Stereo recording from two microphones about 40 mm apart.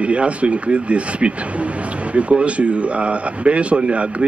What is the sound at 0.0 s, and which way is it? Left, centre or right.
Speech, right.